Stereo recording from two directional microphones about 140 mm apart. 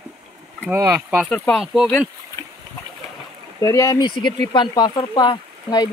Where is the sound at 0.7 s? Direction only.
15° right (ahead or behind).